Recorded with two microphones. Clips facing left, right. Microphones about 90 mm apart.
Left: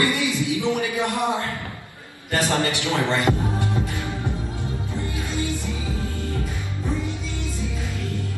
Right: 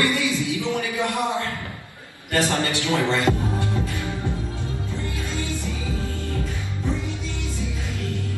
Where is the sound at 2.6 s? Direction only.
20° left (ahead or behind).